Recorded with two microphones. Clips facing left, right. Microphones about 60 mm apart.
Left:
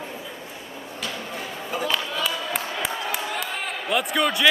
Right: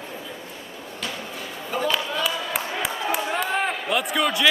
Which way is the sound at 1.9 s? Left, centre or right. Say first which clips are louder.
Right 1 dB; centre.